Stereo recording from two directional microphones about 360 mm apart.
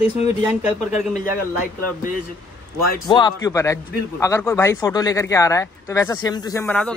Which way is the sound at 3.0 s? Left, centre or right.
Centre.